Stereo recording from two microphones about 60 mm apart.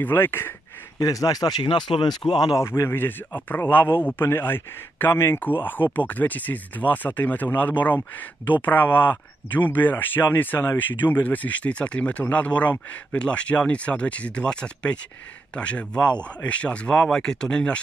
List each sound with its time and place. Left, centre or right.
0.0 s speech: left
0.9 s speech: left
2.2 s speech: left; by 17.7 s centre